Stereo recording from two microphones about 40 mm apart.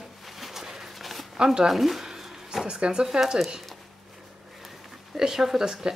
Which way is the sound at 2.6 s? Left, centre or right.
Right.